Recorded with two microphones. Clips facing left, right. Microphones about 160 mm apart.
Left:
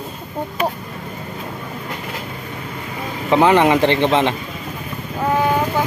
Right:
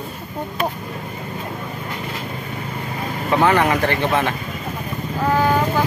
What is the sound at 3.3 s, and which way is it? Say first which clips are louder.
Speech: left 4 dB; 20° left (ahead or behind).